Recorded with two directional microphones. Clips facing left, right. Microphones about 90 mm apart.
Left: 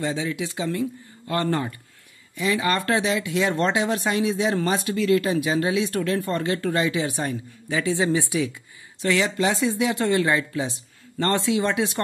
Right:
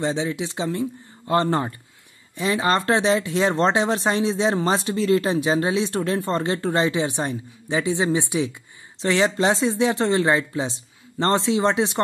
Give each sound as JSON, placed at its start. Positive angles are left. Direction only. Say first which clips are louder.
{"t": 0.0, "sound": "speech", "louder": "right 2 dB", "side_deg": -25}